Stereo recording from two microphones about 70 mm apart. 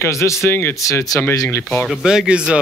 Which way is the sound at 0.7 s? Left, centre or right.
Left.